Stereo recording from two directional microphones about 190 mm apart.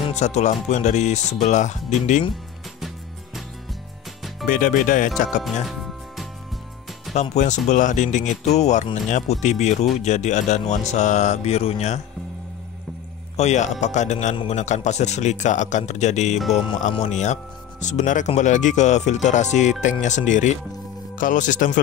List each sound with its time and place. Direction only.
0.1 s speech: 35° left (ahead or behind)
4.5 s speech: 45° left (ahead or behind)
5.4 s music: centre (ahead or behind)
7.2 s speech: 40° left (ahead or behind)
13.4 s speech: 35° left (ahead or behind)
14.3 s a man's voice: 25° left (ahead or behind)
14.6 s speech: 40° left (ahead or behind)